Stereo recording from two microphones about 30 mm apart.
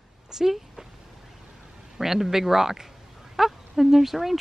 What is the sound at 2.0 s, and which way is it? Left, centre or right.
Speech, centre.